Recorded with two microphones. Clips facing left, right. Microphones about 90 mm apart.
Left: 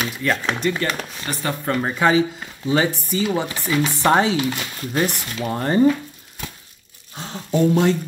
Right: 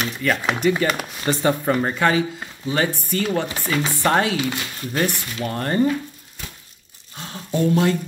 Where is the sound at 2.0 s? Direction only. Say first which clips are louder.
Left 2 dB; 20° left (ahead or behind).